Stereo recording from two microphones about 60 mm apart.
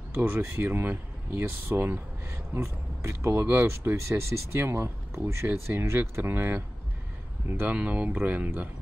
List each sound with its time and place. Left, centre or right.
0.1 s speech: right
3.6 s speech: right
6.1 s speech: right
7.6 s speech: right